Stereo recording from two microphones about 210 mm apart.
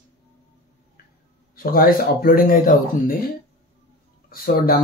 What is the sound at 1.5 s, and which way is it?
Speech, 45° left (ahead or behind).